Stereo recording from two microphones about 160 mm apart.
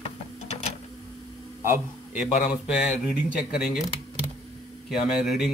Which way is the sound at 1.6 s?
15° right (ahead or behind).